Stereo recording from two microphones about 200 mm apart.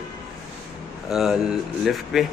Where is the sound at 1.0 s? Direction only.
Centre (ahead or behind).